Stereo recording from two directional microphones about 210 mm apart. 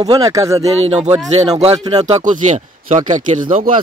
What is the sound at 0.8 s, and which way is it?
Speech, 30° right (ahead or behind).